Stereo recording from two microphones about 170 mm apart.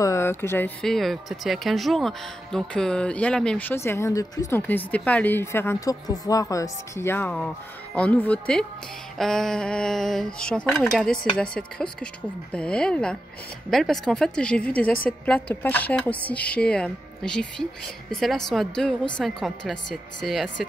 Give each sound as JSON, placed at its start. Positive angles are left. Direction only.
{"t": 0.0, "sound": "speech", "side_deg": 15}
{"t": 0.8, "sound": "speech", "side_deg": 0}